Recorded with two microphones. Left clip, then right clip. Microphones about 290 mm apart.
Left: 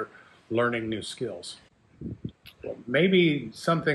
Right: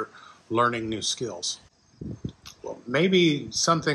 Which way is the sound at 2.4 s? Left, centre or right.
Centre.